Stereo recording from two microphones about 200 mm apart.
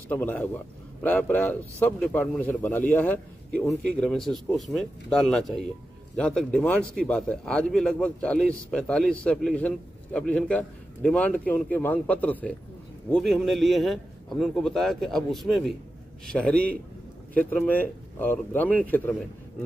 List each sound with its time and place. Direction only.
0.1 s a man's voice: 10° left (ahead or behind)